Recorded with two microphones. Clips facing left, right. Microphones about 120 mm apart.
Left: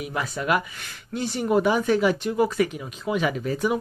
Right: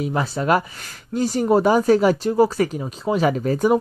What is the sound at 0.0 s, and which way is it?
Speech, 30° right (ahead or behind).